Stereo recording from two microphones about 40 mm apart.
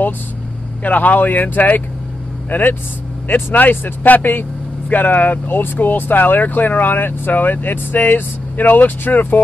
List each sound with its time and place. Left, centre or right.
0.8 s speech: left